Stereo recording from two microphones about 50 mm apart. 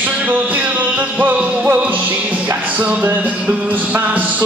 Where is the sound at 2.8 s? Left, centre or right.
Right.